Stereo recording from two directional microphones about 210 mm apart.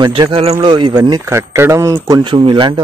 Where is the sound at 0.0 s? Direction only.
25° right (ahead or behind).